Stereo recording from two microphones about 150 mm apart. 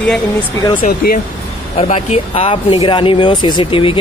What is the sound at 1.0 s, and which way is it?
Speech, 90° left.